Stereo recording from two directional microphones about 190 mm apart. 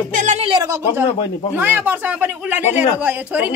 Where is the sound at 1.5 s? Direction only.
10° right (ahead or behind).